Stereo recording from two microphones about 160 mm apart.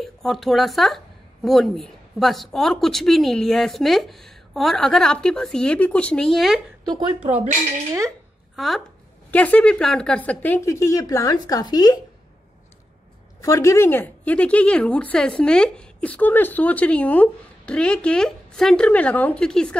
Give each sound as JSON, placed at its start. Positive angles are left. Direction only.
{"t": 0.0, "sound": "speech", "side_deg": 0}
{"t": 8.5, "sound": "a woman's voice", "side_deg": 0}
{"t": 13.4, "sound": "a woman's voice", "side_deg": 20}